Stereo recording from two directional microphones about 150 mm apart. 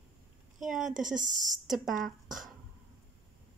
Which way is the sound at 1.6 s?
Centre (ahead or behind).